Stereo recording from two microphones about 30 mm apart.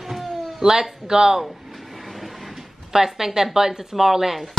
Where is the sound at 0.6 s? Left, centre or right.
Centre.